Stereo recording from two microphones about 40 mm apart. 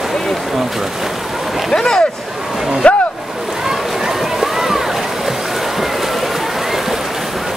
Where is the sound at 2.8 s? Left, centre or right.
Left.